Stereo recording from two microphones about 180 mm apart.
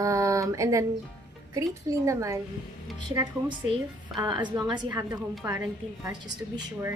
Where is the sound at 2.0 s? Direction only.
15° right (ahead or behind).